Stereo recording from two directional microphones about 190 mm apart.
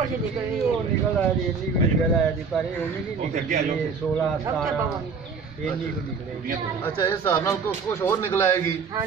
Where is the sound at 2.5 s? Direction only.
Centre (ahead or behind).